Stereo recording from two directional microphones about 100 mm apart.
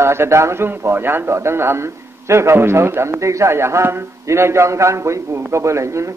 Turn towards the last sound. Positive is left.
turn(degrees=-30)  # may be behind; listen again after turning